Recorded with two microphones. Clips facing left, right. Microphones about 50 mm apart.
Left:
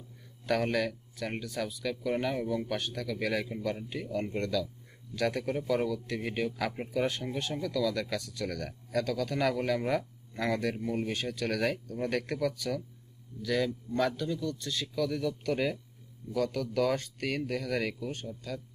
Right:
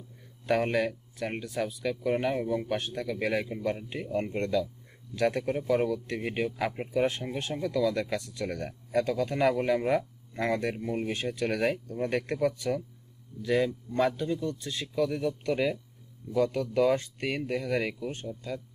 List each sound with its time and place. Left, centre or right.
0.5 s speech: centre
3.9 s a man's voice: right